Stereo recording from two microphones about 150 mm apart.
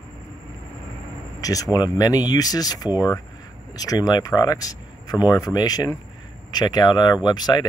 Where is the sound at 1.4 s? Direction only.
25° left (ahead or behind).